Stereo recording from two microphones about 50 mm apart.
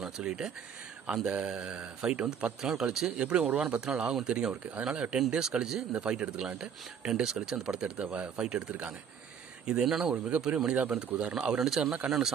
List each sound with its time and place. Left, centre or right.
0.0 s speech: centre
8.0 s speech: right
9.7 s speech: centre